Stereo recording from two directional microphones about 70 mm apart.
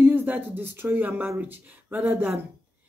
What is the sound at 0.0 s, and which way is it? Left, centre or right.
Speech, right.